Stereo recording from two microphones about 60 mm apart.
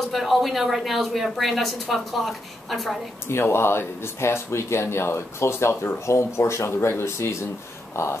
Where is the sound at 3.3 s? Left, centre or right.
Left.